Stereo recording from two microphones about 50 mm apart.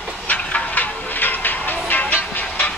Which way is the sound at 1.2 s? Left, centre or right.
Left.